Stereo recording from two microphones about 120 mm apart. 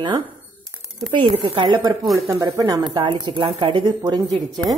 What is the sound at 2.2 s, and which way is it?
Speech, 30° right (ahead or behind).